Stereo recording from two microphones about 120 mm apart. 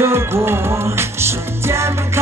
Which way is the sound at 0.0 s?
20° right (ahead or behind).